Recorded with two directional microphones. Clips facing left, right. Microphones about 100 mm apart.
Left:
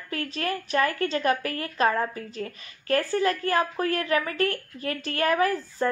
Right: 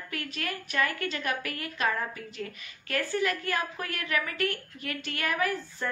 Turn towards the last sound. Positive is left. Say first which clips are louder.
# left 6 dB
turn(degrees=40)  # may be behind; listen again after turning